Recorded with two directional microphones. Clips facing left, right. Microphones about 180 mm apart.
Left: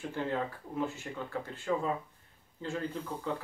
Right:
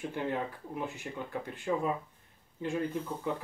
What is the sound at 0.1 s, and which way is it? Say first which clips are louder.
Speech: left 3 dB; 15° right (ahead or behind).